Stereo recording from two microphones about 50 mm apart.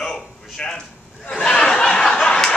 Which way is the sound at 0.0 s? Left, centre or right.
Centre.